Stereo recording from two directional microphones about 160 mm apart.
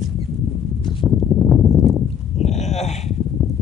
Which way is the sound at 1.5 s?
Centre (ahead or behind).